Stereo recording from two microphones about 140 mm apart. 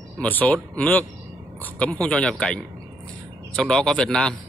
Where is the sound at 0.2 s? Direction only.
10° left (ahead or behind).